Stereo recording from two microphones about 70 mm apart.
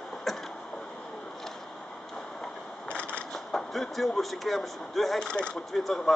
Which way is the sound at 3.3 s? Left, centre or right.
Centre.